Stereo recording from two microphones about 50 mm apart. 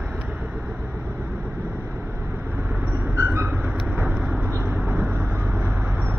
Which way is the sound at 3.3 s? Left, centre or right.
Right.